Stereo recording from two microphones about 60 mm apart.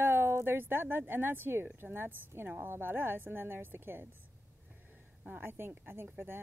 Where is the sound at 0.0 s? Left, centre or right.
Right.